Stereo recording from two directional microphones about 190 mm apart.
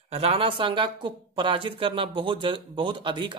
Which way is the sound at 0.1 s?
30° right (ahead or behind).